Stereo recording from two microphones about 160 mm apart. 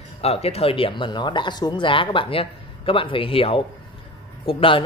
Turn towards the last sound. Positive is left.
turn(degrees=35)  # may be behind; listen again after turning